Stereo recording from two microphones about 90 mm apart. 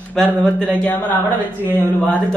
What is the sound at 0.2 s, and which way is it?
Speech, 5° left (ahead or behind).